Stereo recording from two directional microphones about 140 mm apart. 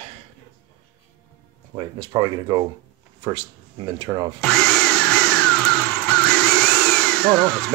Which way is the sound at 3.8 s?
30° right (ahead or behind).